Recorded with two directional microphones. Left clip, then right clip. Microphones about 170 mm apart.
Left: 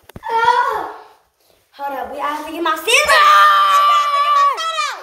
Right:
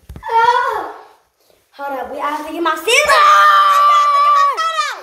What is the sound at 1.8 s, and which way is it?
A woman's voice, 10° right (ahead or behind).